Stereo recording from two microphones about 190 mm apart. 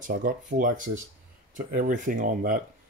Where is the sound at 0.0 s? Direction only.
50° right (ahead or behind).